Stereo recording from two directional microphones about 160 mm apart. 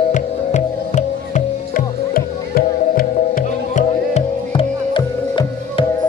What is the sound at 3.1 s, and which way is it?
Music, 50° left (ahead or behind).